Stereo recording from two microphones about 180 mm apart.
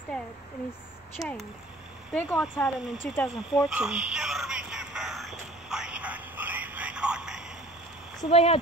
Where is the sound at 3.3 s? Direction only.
5° right (ahead or behind).